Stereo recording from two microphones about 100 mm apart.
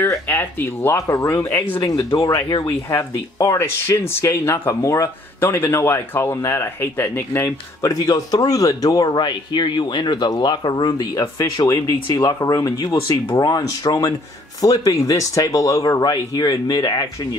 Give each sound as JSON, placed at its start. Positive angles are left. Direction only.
{"t": 0.3, "sound": "speech", "side_deg": 20}